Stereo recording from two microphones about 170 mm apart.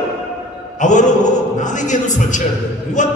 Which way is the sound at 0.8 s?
45° left (ahead or behind).